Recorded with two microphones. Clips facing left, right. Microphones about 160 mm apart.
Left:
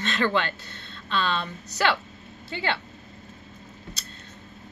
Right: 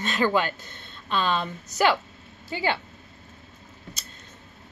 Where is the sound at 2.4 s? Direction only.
10° right (ahead or behind).